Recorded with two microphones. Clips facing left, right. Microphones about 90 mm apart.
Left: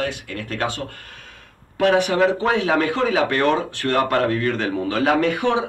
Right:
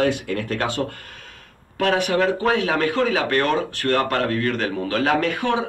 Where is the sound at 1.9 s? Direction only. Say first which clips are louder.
Left 2 dB; 20° left (ahead or behind).